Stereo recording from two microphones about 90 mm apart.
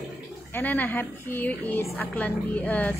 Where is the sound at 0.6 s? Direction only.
20° left (ahead or behind).